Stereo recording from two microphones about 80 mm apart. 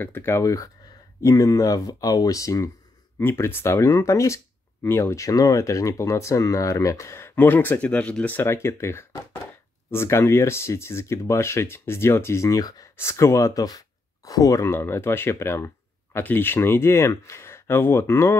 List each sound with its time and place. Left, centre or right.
0.0 s speech: left
1.2 s speech: left
3.2 s speech: left
7.3 s speech: left
8.6 s speech: left
12.9 s speech: left
14.7 s speech: left